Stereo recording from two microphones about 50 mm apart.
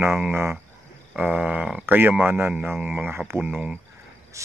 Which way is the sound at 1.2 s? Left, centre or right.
Right.